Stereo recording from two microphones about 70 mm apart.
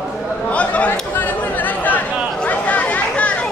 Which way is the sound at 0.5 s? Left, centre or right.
Centre.